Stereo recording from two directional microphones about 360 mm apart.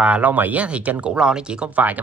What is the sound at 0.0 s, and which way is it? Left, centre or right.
Speech, centre.